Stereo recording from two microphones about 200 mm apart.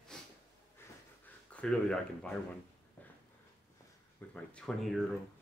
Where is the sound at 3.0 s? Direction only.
5° left (ahead or behind).